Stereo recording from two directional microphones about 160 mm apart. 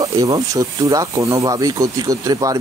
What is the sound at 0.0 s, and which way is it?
Speech, 20° right (ahead or behind).